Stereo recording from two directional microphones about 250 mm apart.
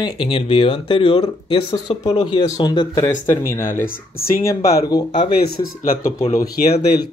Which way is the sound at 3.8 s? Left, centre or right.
Left.